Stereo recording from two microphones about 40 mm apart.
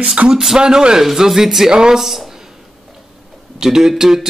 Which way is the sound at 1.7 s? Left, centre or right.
Centre.